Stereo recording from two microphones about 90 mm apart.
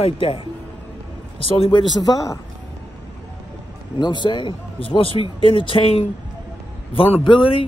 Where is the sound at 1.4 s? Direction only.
90° left; by 2.4 s 40° left (ahead or behind).